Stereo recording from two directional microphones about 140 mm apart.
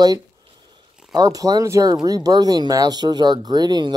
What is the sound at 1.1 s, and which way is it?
Speech, 25° right (ahead or behind).